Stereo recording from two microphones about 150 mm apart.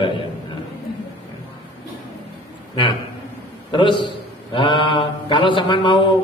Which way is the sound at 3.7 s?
35° left (ahead or behind).